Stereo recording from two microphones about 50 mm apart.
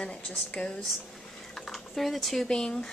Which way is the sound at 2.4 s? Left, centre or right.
Centre.